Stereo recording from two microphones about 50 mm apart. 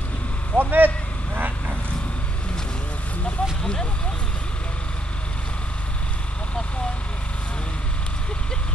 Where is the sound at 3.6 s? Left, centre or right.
Centre.